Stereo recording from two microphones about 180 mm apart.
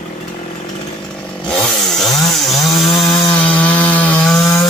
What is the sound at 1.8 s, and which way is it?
Chainsaw, centre (ahead or behind).